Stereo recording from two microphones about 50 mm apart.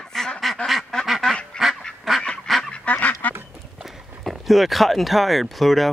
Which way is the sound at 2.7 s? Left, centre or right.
Left.